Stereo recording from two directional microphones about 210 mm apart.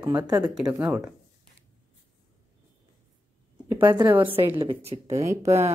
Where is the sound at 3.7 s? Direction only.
20° right (ahead or behind).